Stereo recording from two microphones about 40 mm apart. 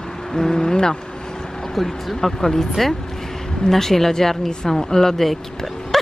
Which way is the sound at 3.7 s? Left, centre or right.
Centre.